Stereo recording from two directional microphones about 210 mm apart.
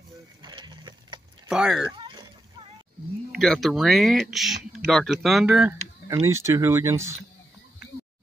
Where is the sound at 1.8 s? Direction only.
20° right (ahead or behind).